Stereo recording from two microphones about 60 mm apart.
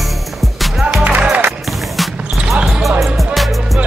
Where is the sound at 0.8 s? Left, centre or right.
Right.